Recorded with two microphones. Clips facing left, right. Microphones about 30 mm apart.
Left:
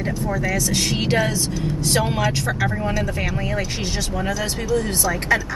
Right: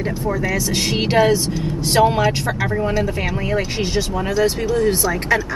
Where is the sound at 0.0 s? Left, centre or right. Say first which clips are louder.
Right 2 dB; centre.